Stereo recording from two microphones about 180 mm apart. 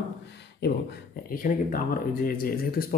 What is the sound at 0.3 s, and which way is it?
Speech, 65° left (ahead or behind).